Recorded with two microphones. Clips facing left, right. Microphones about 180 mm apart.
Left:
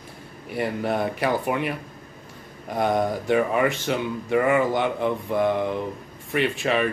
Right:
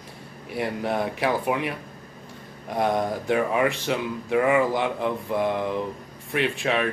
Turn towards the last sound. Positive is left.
turn(degrees=0)  # may be behind; listen again after turning